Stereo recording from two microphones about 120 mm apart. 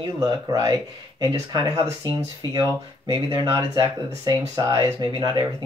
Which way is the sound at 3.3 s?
35° right (ahead or behind).